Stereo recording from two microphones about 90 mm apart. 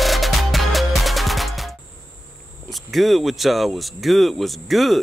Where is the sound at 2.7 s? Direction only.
Centre (ahead or behind).